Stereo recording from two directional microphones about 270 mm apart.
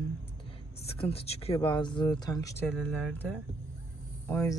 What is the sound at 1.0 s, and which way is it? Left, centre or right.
Speech, left.